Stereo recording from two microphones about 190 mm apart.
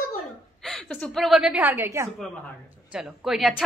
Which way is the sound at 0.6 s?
5° left (ahead or behind).